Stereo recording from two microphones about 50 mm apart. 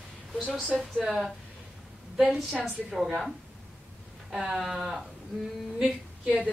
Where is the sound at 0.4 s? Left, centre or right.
Centre.